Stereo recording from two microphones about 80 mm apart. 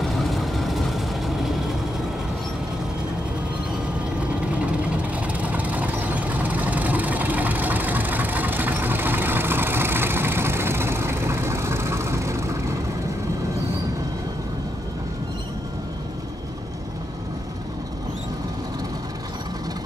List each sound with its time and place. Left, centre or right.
0.0 s vehicle: centre
4.5 s vehicle: centre; by 12.7 s right